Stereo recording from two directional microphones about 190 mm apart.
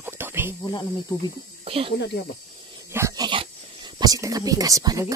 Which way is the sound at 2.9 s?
15° right (ahead or behind).